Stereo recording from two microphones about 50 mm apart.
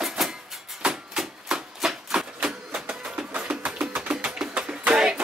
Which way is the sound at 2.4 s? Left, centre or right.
Right.